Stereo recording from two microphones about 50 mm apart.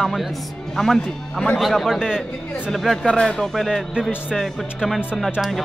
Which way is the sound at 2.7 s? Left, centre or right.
Centre.